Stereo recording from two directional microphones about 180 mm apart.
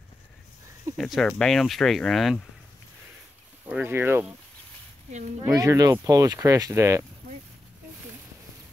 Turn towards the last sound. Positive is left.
turn(degrees=-15)  # may be behind; listen again after turning